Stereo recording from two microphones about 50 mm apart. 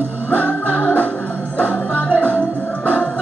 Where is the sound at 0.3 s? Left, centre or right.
Left.